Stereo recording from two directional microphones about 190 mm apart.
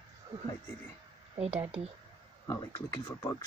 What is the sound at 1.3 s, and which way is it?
Speech, 30° right (ahead or behind).